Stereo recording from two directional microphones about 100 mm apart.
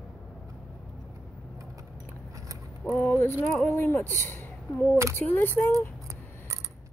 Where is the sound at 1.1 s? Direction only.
35° right (ahead or behind).